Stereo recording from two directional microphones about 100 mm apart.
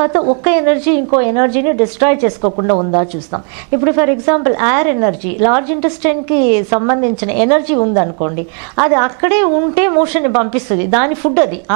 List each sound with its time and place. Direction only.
0.0 s speech: 20° right (ahead or behind)